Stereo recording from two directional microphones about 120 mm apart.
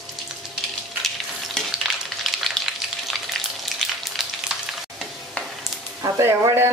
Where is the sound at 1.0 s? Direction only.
Centre (ahead or behind).